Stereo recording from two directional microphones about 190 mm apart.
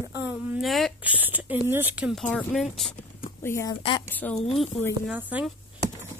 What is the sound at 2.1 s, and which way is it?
Speech, centre (ahead or behind).